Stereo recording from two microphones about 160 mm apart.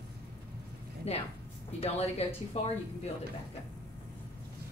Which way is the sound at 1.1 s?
40° left (ahead or behind).